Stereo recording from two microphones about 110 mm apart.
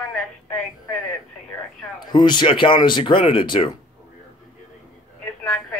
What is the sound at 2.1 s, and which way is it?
Speech, 45° left (ahead or behind).